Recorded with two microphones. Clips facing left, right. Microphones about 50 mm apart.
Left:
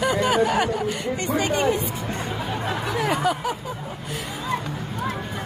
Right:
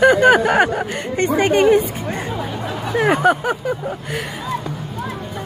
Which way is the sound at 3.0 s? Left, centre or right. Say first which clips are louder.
Right 9 dB; right.